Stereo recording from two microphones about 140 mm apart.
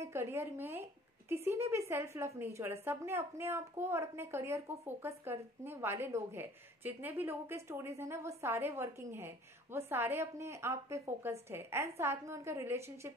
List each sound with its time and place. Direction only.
0.0 s a woman's voice: 20° right (ahead or behind)